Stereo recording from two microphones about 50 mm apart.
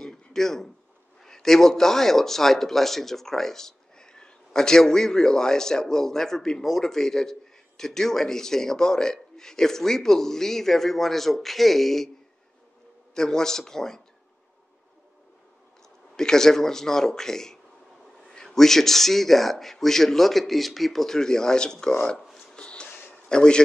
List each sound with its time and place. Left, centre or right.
0.0 s a sound: centre
1.2 s speech: centre
13.1 s speech: centre
16.2 s speech: centre
22.3 s a sound: centre
23.2 s a man's voice: centre